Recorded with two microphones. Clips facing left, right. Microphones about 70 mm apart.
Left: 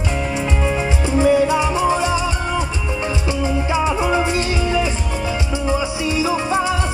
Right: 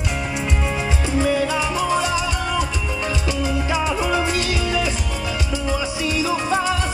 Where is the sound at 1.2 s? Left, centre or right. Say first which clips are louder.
Left 6 dB; left.